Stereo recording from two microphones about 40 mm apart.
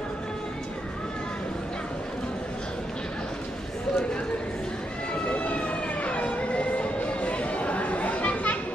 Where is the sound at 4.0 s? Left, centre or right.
Left.